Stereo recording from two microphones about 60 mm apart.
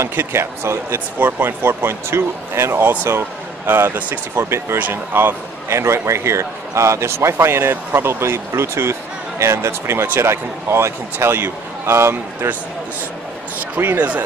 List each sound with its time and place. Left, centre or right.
0.0 s a man's voice: right
0.9 s a man's voice: right
4.4 s a man's voice: right
4.7 s a man's voice: right
13.7 s speech: right